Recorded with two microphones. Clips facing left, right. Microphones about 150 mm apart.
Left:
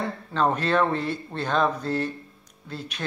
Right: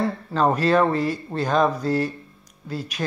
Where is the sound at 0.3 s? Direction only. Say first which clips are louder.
Right 3 dB; 5° right (ahead or behind).